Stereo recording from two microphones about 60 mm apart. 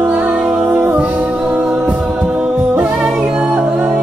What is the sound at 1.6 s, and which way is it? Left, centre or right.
Singing, centre.